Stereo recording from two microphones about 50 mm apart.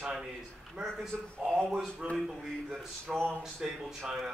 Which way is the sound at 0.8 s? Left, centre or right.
Centre.